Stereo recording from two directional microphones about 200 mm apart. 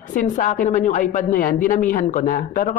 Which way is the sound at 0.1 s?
40° left (ahead or behind).